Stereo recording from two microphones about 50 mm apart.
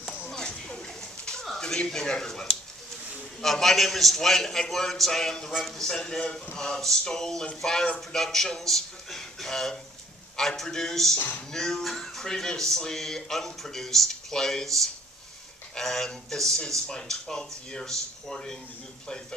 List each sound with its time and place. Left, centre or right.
0.3 s a sound: centre
3.4 s a man's voice: centre
5.5 s a man's voice: centre
5.8 s speech: centre
11.1 s a sound: left
11.5 s speech: centre